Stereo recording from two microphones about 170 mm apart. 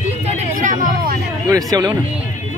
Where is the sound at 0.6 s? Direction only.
50° right (ahead or behind).